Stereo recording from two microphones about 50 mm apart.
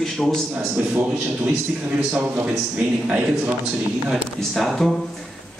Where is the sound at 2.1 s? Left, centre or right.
Right.